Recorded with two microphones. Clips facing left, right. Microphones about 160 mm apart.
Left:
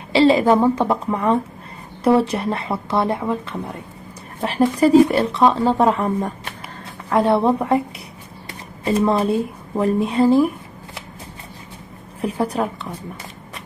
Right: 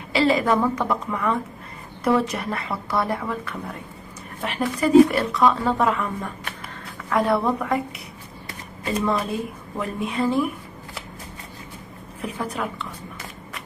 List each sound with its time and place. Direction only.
0.1 s speech: 30° left (ahead or behind)
4.4 s speech: 35° left (ahead or behind)
12.2 s a woman's voice: 35° left (ahead or behind)